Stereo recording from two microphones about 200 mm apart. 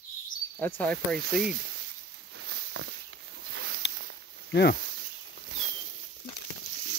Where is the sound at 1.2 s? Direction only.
55° right (ahead or behind).